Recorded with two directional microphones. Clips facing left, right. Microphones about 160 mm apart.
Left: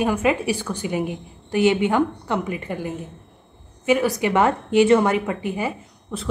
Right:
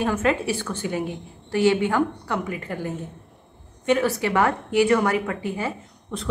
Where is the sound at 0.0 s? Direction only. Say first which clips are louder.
Left 2 dB; 15° left (ahead or behind).